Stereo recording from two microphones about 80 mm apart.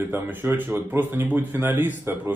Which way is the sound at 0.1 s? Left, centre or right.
Right.